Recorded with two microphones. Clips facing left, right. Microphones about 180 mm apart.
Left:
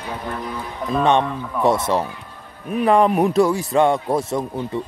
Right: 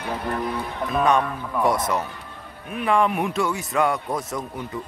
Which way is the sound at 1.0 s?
25° left (ahead or behind).